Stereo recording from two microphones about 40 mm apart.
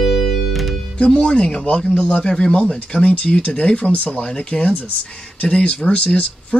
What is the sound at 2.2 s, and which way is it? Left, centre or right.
Speech, centre.